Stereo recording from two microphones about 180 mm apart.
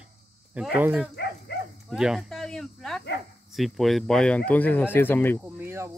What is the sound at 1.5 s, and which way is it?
Dog, 65° left (ahead or behind).